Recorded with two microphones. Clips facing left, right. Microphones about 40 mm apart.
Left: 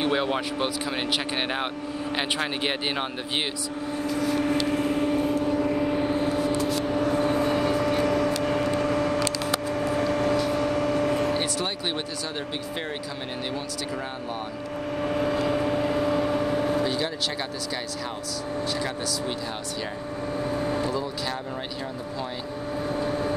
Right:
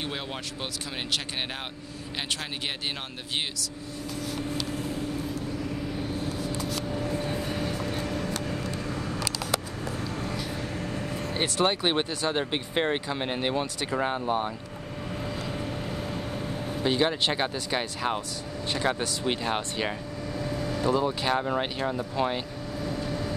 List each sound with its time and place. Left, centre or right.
0.0 s speech: left
4.2 s vehicle: left
6.6 s vehicle: left
11.3 s speech: right
15.0 s vehicle: left
16.8 s speech: right
18.7 s speech: right
20.3 s vehicle: left
20.8 s speech: right
22.8 s vehicle: left